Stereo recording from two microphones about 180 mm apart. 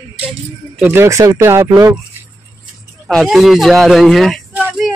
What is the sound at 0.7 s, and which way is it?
Speech, 10° right (ahead or behind).